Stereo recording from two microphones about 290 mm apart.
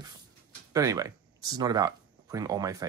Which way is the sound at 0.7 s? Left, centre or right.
Centre.